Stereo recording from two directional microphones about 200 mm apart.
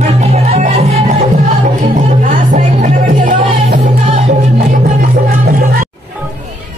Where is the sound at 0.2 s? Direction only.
30° right (ahead or behind).